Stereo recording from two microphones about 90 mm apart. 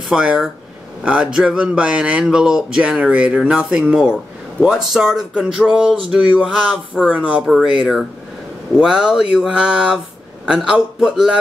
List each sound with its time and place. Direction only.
0.1 s speech: 10° right (ahead or behind)